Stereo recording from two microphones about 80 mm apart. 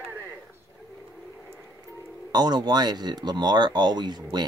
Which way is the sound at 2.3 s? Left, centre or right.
Right.